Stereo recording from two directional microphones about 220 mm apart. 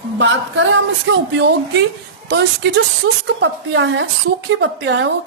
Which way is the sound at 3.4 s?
55° right (ahead or behind).